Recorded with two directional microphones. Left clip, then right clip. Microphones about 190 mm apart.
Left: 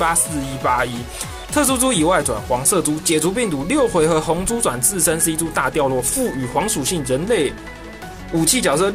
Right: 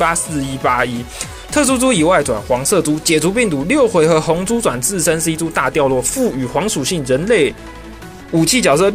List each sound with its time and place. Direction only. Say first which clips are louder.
0.0 s speech: right 3 dB; 15° right (ahead or behind)